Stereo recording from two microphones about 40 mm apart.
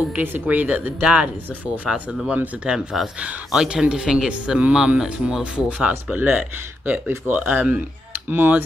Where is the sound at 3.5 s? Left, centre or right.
Right.